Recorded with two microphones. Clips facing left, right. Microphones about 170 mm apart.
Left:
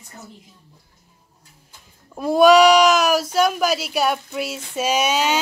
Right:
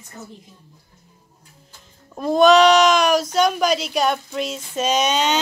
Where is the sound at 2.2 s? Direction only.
10° left (ahead or behind).